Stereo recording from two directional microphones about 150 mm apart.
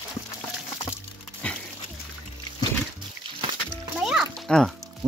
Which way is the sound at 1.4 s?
10° left (ahead or behind).